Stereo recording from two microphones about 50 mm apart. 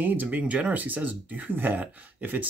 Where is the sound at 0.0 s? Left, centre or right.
Right.